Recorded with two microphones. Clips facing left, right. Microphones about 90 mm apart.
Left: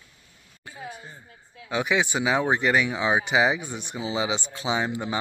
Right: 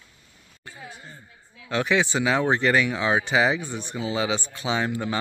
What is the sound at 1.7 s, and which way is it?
Speech, 15° left (ahead or behind).